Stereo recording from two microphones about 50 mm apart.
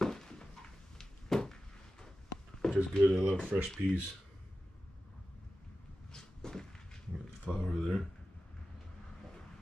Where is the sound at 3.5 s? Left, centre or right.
Right.